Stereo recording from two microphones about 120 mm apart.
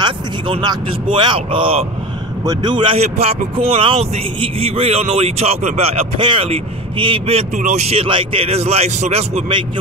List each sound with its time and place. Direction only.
0.0 s speech: 40° right (ahead or behind)
2.4 s speech: 35° right (ahead or behind)
3.2 s a man's voice: 60° right (ahead or behind)